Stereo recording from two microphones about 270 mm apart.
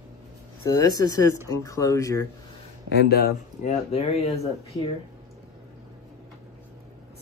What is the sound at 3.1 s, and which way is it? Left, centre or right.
Speech, left.